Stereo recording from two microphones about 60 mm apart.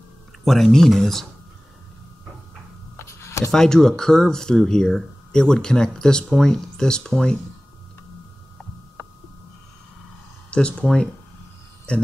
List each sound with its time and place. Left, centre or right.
0.5 s speech: centre
3.0 s a sound: left
3.5 s speech: centre
10.5 s speech: centre